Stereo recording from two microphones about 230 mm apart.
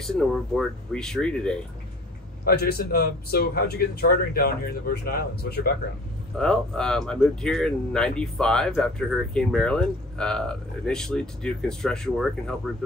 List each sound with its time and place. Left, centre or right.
0.0 s speech: centre
2.4 s speech: left
6.3 s speech: centre